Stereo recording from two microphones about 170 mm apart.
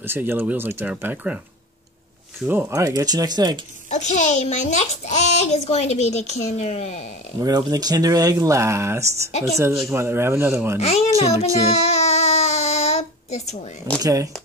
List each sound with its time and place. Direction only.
0.0 s speech: 15° right (ahead or behind)
2.4 s speech: 15° right (ahead or behind)
3.9 s a child's voice: 45° left (ahead or behind)
7.3 s speech: 20° right (ahead or behind)
10.8 s a child's voice: 40° left (ahead or behind)
11.7 s babbling: 40° left (ahead or behind)
14.0 s speech: 20° right (ahead or behind)